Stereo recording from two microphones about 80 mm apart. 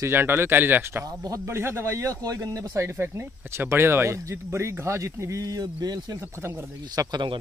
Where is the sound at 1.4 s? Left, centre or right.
Right.